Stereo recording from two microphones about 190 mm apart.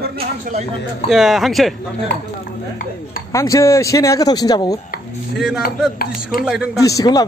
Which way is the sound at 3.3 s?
15° left (ahead or behind).